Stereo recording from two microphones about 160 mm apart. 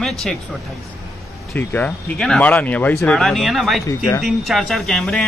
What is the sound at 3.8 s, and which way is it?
Speech, 20° left (ahead or behind).